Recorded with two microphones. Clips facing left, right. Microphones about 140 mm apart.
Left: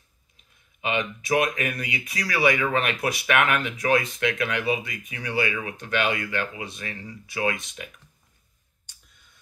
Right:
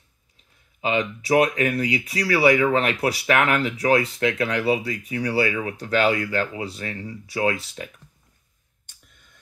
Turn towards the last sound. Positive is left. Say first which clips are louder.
# right 4 dB
turn(degrees=-30)  # may be behind; listen again after turning